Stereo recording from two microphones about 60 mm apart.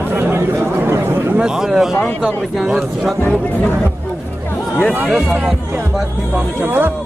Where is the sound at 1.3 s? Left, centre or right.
Centre.